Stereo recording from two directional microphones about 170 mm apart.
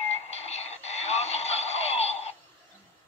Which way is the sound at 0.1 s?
40° left (ahead or behind).